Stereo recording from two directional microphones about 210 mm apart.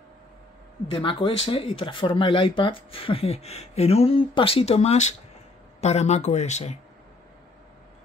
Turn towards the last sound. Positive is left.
turn(degrees=30)  # may be behind; listen again after turning